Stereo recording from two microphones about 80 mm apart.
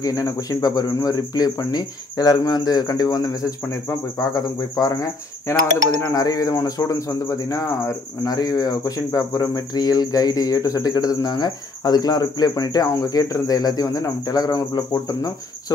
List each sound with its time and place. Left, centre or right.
0.0 s speech: left